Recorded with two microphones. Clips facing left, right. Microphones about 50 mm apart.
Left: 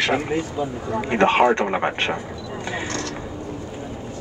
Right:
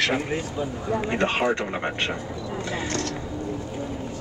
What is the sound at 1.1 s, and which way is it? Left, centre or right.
Speech, left.